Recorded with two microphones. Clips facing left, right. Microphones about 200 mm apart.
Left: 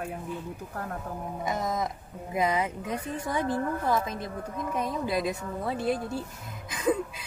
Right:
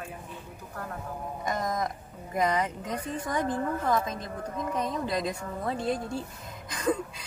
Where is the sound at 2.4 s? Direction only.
10° left (ahead or behind).